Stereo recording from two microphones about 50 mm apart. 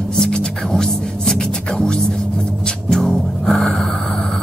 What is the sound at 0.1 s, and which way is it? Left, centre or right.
Music, centre.